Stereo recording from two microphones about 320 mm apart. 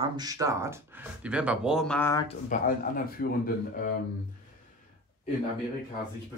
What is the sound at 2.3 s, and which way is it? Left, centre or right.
Speech, left.